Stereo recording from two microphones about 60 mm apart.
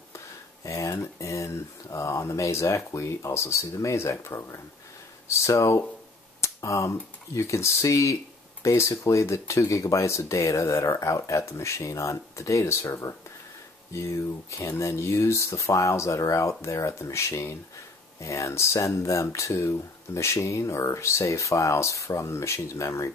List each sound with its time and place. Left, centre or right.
0.7 s speech: left